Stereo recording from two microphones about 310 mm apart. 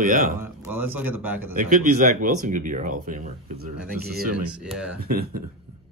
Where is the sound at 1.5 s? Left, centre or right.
Right.